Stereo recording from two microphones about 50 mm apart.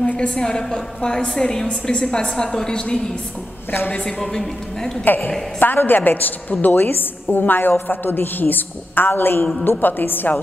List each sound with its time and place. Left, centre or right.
0.1 s a woman's voice: left
4.2 s a woman's voice: centre
5.0 s a woman's voice: left